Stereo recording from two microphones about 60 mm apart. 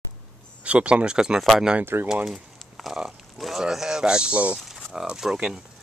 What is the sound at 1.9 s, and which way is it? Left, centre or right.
Speech, right.